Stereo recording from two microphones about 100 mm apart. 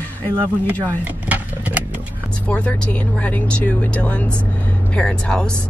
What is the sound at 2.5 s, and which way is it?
Speech, 10° left (ahead or behind).